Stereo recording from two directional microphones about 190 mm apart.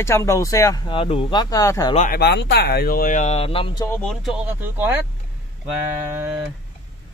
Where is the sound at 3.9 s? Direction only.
5° left (ahead or behind).